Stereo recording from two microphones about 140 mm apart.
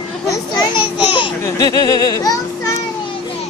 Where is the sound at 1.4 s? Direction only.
25° left (ahead or behind).